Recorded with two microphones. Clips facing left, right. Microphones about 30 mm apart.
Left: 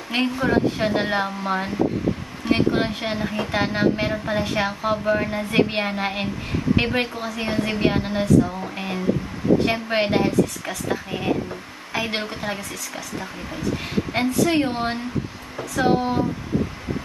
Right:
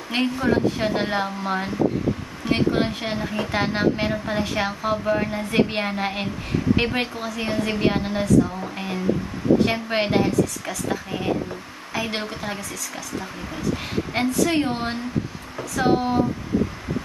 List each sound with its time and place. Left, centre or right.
0.1 s a woman's voice: centre
14.4 s a woman's voice: centre